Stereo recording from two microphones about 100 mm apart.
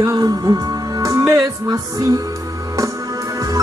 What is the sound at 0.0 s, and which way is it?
Music, 35° right (ahead or behind).